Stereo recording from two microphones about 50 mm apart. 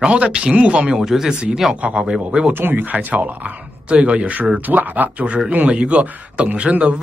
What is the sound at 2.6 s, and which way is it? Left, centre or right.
Speech, right.